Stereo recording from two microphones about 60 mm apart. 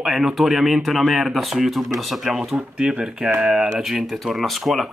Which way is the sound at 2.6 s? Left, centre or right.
Centre.